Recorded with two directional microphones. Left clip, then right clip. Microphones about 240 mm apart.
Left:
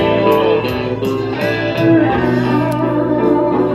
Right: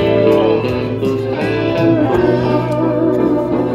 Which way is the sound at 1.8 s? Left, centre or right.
Right.